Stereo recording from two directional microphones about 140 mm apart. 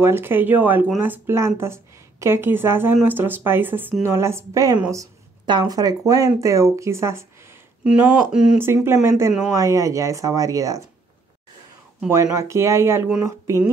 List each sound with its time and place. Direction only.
0.0 s speech: 15° right (ahead or behind)
7.8 s speech: 5° right (ahead or behind)
8.5 s speech: 15° right (ahead or behind)
12.1 s speech: 20° right (ahead or behind)